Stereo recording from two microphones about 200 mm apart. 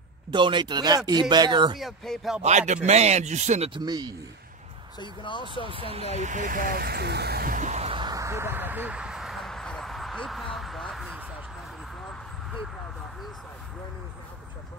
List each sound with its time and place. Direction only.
0.3 s speech: 25° right (ahead or behind)
1.8 s speech: centre (ahead or behind)
2.4 s speech: 35° right (ahead or behind)
4.9 s speech: 25° left (ahead or behind)
5.7 s speech: 25° right (ahead or behind)
6.1 s vehicle: 40° right (ahead or behind); by 11.2 s centre (ahead or behind)